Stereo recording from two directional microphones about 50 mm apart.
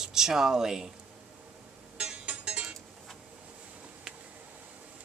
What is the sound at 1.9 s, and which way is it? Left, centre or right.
Music, right.